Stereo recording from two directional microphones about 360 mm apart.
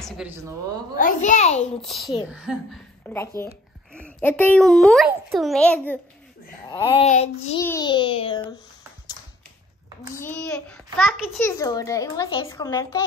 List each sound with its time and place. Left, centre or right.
0.0 s a woman's voice: centre
0.9 s a child's voice: left
2.2 s a child's voice: centre
10.1 s a child's voice: centre